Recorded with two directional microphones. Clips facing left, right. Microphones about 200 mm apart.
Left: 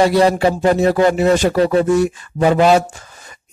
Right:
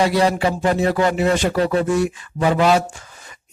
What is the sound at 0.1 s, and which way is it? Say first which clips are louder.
Speech: left 4 dB; 40° left (ahead or behind).